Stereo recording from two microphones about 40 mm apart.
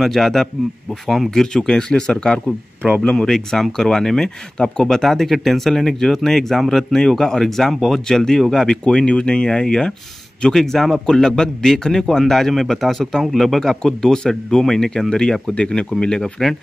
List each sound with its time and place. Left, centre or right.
0.0 s speech: centre
8.8 s speech: left
10.5 s speech: centre
13.6 s speech: centre
16.2 s speech: centre